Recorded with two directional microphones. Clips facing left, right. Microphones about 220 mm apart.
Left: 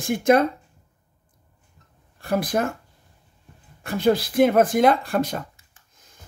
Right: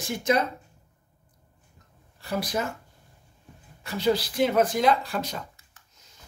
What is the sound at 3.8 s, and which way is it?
Speech, 55° left (ahead or behind).